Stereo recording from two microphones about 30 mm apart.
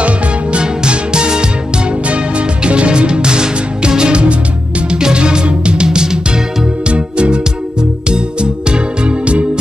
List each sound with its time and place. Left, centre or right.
0.0 s music: right
4.1 s music: right
5.9 s music: right
6.9 s music: right